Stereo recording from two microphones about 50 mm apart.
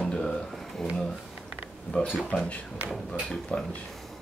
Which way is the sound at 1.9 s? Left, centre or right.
Centre.